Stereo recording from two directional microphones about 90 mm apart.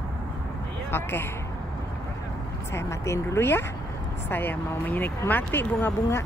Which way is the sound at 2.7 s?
30° left (ahead or behind).